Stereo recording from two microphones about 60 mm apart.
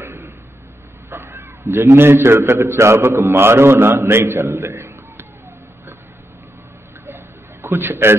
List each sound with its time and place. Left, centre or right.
0.0 s a sound: right
1.1 s a man's voice: right
7.6 s a man's voice: right